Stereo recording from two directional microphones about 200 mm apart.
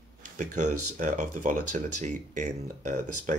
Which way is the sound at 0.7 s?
90° right.